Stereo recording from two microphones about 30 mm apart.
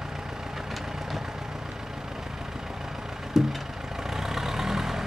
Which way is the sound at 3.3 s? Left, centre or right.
Centre.